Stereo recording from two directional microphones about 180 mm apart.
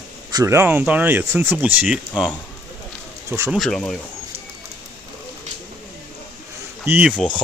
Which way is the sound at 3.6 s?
5° left (ahead or behind).